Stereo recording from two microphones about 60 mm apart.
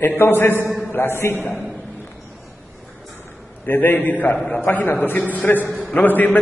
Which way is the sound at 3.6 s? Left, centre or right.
Left.